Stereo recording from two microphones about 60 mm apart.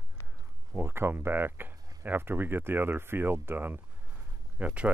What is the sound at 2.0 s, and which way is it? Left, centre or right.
Speech, right.